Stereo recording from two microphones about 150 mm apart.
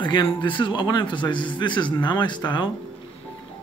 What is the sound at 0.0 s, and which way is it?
Speech, 30° left (ahead or behind).